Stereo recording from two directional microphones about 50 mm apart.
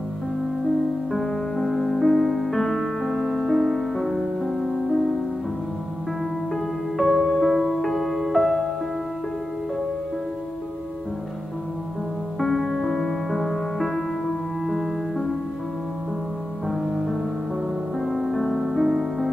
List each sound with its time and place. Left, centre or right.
1.1 s music: centre
6.5 s music: centre
12.4 s music: centre
16.6 s music: centre